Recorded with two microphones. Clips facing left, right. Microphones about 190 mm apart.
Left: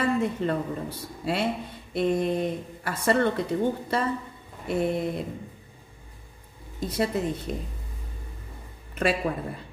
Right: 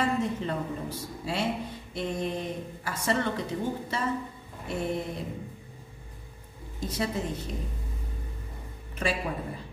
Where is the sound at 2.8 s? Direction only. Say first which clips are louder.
Left 5 dB; 60° left (ahead or behind).